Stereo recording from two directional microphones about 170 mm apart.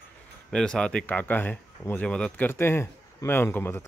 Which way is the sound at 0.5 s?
5° left (ahead or behind).